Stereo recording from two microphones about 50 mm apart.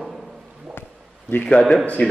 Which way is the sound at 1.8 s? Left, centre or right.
Left.